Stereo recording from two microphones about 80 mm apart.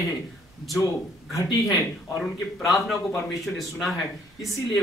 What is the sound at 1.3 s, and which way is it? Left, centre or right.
Speech, left.